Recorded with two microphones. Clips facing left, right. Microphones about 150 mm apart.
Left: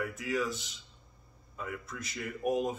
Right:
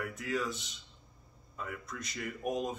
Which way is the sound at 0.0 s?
Centre (ahead or behind).